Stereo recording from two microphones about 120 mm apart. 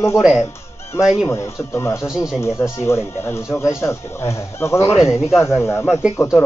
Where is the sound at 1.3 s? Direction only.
20° left (ahead or behind).